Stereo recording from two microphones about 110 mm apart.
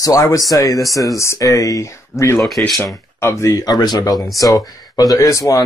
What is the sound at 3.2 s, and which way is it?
Speech, 25° left (ahead or behind).